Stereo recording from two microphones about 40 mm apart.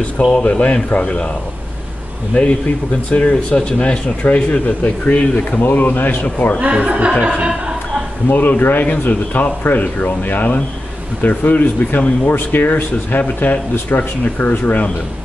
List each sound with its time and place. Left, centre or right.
0.3 s speech: left
3.1 s speech: left
5.6 s speech: left
6.7 s speech: right
7.1 s music: centre
7.3 s a sound: right
8.3 s speech: left